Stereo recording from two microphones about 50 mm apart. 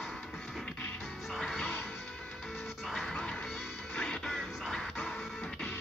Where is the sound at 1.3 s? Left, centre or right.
Centre.